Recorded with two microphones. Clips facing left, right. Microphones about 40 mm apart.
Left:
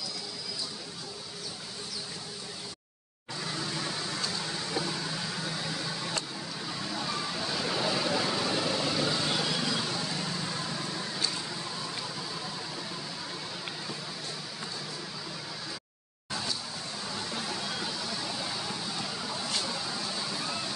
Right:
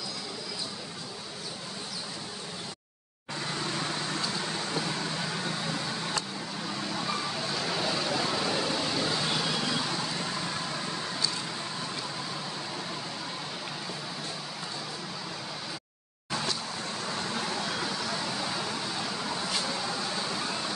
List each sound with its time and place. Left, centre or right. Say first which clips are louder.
5.3 s vehicle: right 2 dB; right
7.4 s vehicle: left 2 dB; centre